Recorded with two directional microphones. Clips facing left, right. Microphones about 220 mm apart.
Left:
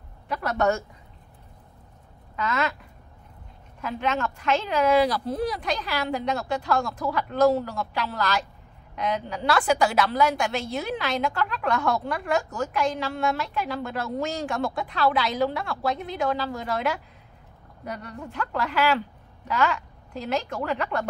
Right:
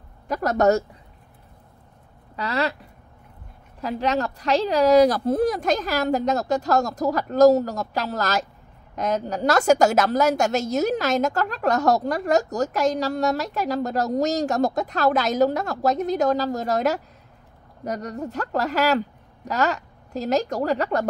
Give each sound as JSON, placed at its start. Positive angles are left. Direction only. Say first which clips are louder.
{"t": 0.3, "sound": "a woman's voice", "louder": "right 5 dB", "side_deg": -40}
{"t": 2.3, "sound": "a woman's voice", "louder": "right 2 dB", "side_deg": -35}
{"t": 4.0, "sound": "a woman's voice", "louder": "right 3 dB", "side_deg": -35}